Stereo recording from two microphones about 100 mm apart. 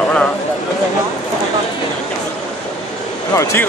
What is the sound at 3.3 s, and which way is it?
Speech, 30° left (ahead or behind).